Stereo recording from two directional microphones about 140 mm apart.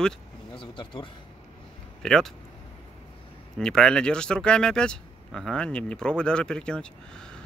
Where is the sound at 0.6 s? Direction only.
40° left (ahead or behind).